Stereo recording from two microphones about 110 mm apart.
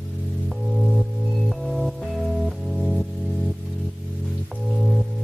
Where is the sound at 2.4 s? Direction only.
5° right (ahead or behind).